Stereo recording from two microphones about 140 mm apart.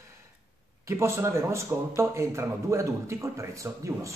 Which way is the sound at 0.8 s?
20° right (ahead or behind).